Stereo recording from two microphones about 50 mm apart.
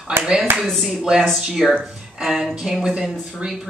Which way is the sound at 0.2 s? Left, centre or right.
Centre.